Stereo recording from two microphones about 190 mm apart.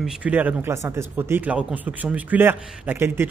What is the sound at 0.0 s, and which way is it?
A man's voice, 5° right (ahead or behind).